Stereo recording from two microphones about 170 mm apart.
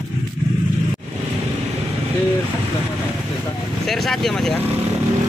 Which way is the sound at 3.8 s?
Centre (ahead or behind).